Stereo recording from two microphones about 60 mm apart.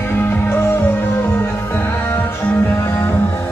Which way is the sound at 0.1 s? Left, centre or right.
Left.